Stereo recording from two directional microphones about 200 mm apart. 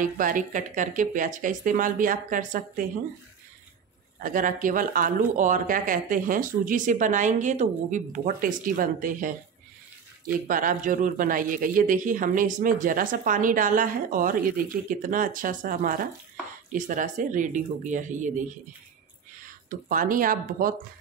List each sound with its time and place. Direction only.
0.0 s speech: 40° right (ahead or behind)
4.2 s speech: 40° right (ahead or behind)
10.4 s speech: 40° right (ahead or behind)
19.9 s speech: 45° right (ahead or behind)